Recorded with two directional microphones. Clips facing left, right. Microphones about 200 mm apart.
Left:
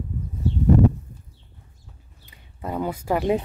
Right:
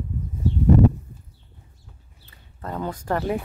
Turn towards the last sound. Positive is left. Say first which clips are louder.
# left 3 dB
turn(degrees=15)  # may be behind; listen again after turning